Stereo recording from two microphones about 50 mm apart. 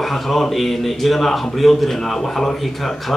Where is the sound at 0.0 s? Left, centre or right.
Centre.